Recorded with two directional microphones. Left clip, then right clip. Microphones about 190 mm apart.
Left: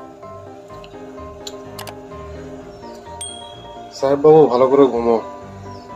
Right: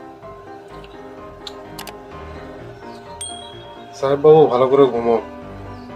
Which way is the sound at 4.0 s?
15° left (ahead or behind).